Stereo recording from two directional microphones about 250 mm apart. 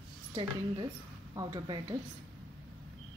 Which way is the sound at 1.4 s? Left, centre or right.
Centre.